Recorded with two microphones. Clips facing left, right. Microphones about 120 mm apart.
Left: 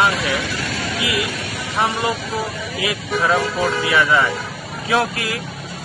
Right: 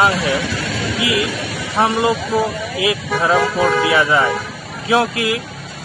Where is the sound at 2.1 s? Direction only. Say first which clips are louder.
Right 6 dB; 60° right (ahead or behind).